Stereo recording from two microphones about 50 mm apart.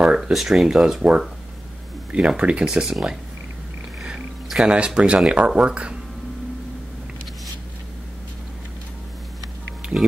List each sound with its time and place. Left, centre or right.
0.0 s speech: centre
2.1 s speech: right
2.6 s speech: centre
4.6 s speech: centre